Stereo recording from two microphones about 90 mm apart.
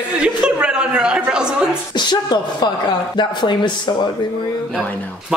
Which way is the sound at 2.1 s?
55° left (ahead or behind).